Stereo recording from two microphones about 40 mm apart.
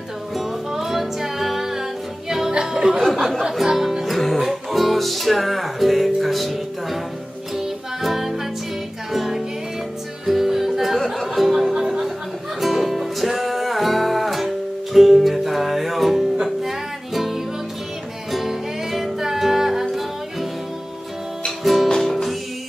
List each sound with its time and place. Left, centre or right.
0.4 s music: centre
3.0 s a sound: centre
3.7 s music: centre
12.5 s music: centre
21.5 s music: centre